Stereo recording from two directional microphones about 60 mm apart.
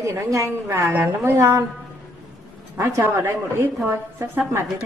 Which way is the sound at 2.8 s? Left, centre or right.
Right.